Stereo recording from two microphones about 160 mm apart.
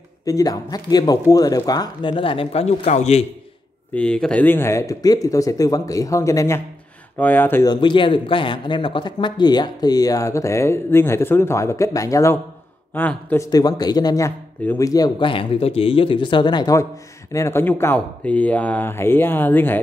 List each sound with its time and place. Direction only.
0.2 s a man's voice: 20° left (ahead or behind); by 3.3 s 45° left (ahead or behind)
3.9 s a man's voice: 5° left (ahead or behind)
7.6 s a man's voice: 30° left (ahead or behind); by 13.5 s 10° left (ahead or behind)
13.5 s a man's voice: 25° left (ahead or behind)